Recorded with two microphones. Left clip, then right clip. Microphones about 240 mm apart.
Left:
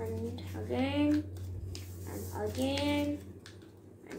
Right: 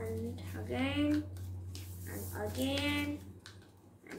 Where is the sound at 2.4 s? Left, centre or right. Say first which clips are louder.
Left 3 dB; centre.